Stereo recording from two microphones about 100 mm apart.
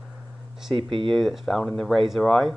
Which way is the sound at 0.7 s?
60° right (ahead or behind).